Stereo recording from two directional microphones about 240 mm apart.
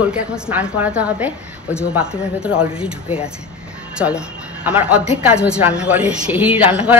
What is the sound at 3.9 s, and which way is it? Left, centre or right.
A woman's voice, centre.